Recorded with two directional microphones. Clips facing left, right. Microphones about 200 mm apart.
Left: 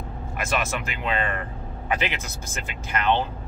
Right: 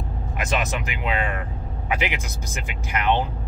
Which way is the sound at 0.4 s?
15° right (ahead or behind).